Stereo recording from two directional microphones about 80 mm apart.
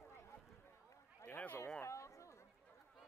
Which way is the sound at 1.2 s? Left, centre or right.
Left.